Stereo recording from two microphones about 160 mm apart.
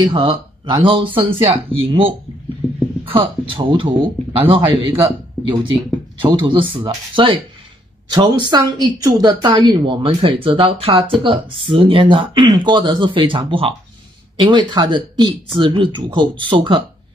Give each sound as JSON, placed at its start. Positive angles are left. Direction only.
{"t": 0.1, "sound": "speech", "side_deg": -35}
{"t": 2.6, "sound": "a sound", "side_deg": 0}
{"t": 3.1, "sound": "a woman's voice", "side_deg": -35}